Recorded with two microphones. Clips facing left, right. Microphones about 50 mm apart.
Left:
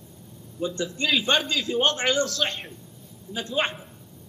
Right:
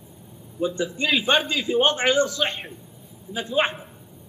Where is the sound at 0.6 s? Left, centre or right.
Centre.